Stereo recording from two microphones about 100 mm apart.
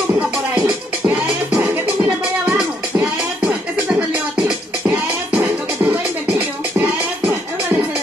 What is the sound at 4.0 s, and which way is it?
Music, 10° right (ahead or behind).